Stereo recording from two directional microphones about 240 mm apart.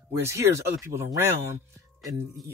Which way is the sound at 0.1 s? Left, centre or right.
Centre.